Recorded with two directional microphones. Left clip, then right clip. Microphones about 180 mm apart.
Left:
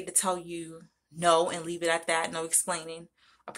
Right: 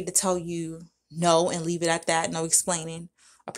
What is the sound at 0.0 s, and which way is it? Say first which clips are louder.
Speech: right 4 dB; 40° right (ahead or behind).